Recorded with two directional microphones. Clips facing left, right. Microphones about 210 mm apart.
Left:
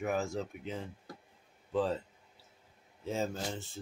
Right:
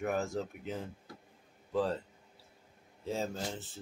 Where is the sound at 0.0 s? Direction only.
Centre (ahead or behind).